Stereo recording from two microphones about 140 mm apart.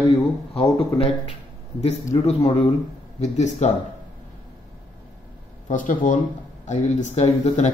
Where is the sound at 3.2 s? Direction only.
55° left (ahead or behind).